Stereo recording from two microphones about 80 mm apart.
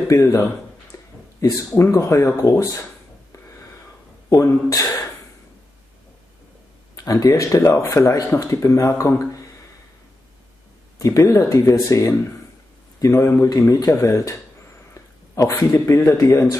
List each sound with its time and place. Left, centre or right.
0.1 s speech: left
0.9 s a sound: left
1.4 s speech: left
7.0 s speech: left
11.0 s speech: left
15.0 s a sound: left
15.7 s speech: left